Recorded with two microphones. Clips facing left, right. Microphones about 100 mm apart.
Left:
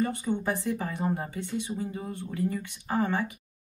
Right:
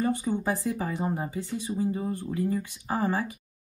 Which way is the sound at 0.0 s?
15° right (ahead or behind).